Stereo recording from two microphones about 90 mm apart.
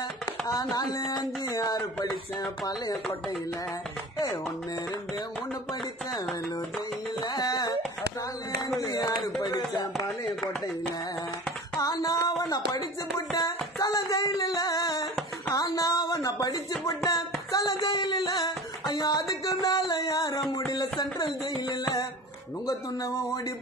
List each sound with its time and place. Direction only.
0.5 s speech: 45° left (ahead or behind)
7.2 s music: 45° left (ahead or behind)
8.6 s speech: 45° left (ahead or behind)
11.8 s speech: 45° left (ahead or behind)
13.4 s a sound: 45° left (ahead or behind)
21.0 s speech: 45° left (ahead or behind)